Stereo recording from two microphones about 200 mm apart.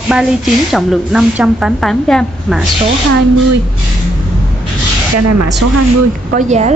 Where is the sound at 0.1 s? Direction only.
Centre (ahead or behind).